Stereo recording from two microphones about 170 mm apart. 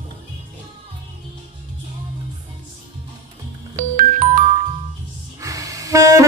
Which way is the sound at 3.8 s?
50° right (ahead or behind).